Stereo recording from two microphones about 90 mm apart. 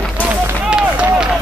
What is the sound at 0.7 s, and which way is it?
Run, 10° right (ahead or behind).